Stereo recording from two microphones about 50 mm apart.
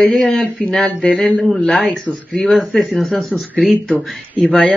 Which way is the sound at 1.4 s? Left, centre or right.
Centre.